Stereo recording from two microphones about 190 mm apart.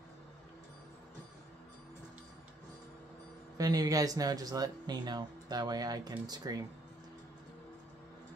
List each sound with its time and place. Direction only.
3.5 s speech: 20° right (ahead or behind)